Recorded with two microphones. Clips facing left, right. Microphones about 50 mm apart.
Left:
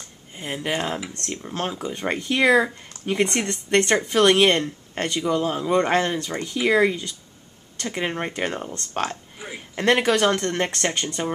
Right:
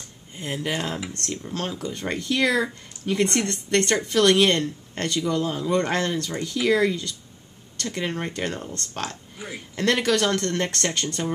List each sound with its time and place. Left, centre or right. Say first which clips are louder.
0.4 s speech: left 1 dB; centre